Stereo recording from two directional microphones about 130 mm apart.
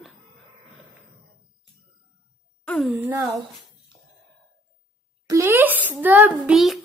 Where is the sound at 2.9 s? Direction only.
15° right (ahead or behind).